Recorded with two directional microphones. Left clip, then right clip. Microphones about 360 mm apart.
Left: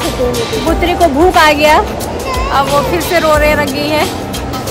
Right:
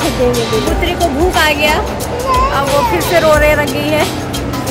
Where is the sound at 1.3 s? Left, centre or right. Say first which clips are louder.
Left 4 dB; centre.